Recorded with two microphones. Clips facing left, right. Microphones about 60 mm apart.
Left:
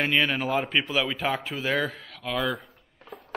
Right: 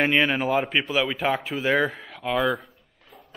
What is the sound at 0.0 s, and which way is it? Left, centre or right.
Speech, centre.